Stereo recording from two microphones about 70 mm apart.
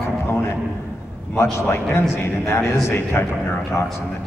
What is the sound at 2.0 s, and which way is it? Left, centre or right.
A man's voice, left.